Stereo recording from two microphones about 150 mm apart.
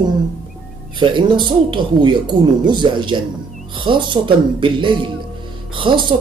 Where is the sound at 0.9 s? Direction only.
30° right (ahead or behind).